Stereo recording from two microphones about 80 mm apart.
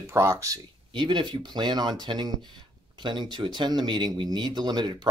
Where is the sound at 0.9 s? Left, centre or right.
Right.